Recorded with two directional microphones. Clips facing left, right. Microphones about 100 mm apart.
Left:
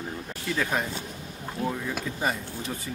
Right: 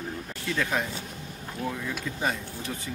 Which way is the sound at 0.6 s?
5° left (ahead or behind).